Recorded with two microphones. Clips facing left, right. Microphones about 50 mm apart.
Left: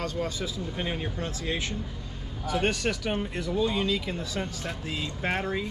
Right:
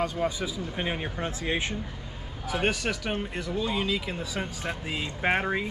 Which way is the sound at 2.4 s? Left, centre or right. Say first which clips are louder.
Left 1 dB; centre.